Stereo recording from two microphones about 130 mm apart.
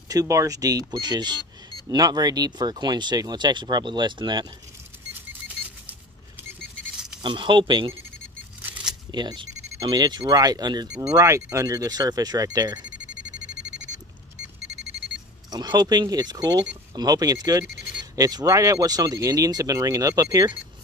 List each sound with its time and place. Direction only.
0.1 s speech: 25° right (ahead or behind)
7.2 s speech: 40° right (ahead or behind)
9.1 s speech: 35° right (ahead or behind)
15.5 s speech: 30° right (ahead or behind)